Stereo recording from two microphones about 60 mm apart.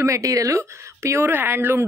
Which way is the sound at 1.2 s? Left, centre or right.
Right.